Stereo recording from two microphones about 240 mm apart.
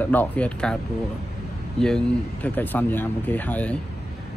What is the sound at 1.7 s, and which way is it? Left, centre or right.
Speech, centre.